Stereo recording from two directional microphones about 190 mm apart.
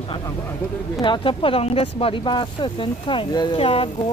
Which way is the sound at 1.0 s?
25° left (ahead or behind).